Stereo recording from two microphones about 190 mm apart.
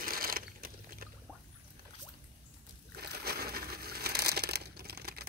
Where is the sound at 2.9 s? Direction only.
55° right (ahead or behind).